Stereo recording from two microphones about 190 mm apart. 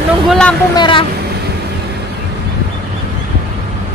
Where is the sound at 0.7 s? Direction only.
25° left (ahead or behind).